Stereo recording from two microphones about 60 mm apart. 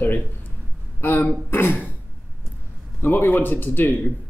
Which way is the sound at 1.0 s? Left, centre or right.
Left.